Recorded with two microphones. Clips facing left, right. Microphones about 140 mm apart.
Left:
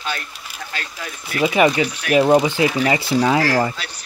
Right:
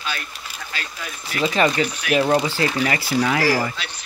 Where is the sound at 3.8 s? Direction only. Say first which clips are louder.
Even; 40° left (ahead or behind).